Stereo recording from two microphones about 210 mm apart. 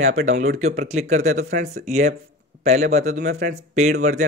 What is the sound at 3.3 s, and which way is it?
Speech, 55° right (ahead or behind).